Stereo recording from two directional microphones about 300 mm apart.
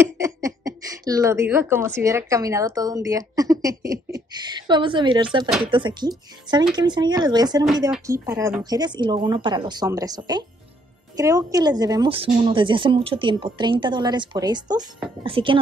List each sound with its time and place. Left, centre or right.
0.2 s a woman's voice: centre